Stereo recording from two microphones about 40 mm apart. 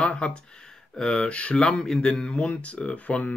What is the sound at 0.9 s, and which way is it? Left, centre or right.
Speech, centre.